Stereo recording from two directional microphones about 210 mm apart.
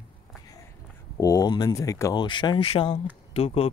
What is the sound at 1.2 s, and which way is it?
Speech, 15° left (ahead or behind).